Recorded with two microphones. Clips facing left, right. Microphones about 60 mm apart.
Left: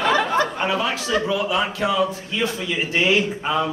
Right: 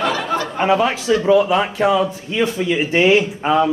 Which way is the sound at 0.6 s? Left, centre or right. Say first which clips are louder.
Right 6 dB; right.